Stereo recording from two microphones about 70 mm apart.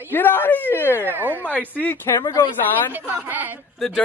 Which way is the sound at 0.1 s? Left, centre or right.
Left.